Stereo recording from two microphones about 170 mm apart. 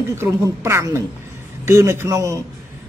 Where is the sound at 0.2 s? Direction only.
15° right (ahead or behind).